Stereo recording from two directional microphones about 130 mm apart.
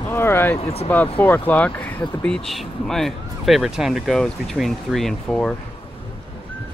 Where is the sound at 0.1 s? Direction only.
20° left (ahead or behind).